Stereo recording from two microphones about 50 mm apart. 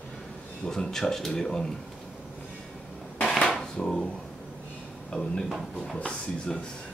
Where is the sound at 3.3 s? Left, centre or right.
Centre.